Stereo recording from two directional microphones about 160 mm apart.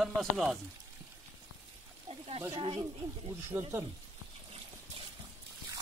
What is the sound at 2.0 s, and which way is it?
Speech, 40° right (ahead or behind).